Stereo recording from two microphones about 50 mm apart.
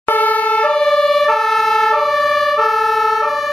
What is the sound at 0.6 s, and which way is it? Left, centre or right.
Emergency vehicle, centre.